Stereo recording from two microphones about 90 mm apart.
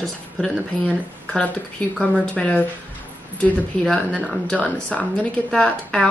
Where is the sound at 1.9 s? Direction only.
10° left (ahead or behind).